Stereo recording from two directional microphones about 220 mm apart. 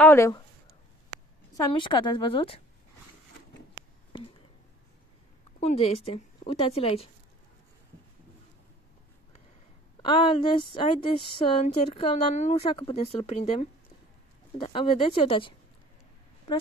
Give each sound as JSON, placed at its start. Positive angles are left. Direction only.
{"t": 0.0, "sound": "a sound", "side_deg": 10}
{"t": 1.7, "sound": "a woman's voice", "side_deg": 20}
{"t": 5.6, "sound": "a woman's voice", "side_deg": 30}
{"t": 10.0, "sound": "a woman's voice", "side_deg": 20}